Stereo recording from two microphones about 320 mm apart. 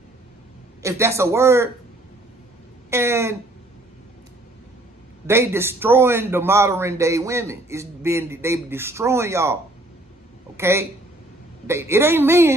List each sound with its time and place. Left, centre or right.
0.8 s a man's voice: centre
2.9 s a man's voice: centre
5.2 s a man's voice: centre